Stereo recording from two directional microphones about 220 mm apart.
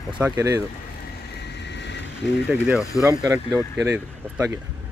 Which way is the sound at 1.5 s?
50° left (ahead or behind).